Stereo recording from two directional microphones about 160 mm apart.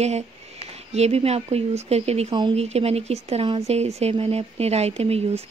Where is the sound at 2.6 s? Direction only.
40° right (ahead or behind).